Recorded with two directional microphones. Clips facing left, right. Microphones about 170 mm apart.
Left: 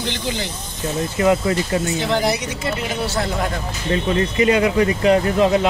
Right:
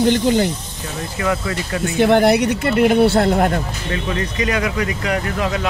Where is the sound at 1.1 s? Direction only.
25° left (ahead or behind).